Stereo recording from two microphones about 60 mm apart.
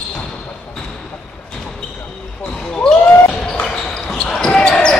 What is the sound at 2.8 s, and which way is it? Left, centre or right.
Basketball bounce, centre.